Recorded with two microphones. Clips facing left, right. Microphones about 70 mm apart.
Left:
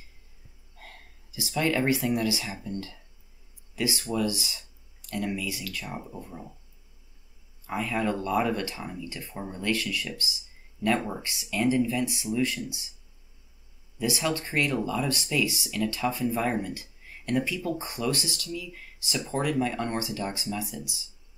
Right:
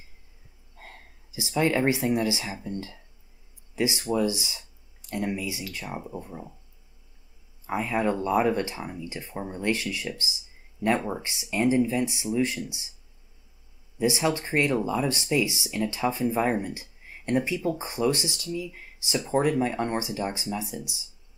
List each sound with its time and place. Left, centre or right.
0.7 s speech: right
7.6 s speech: right
13.9 s speech: right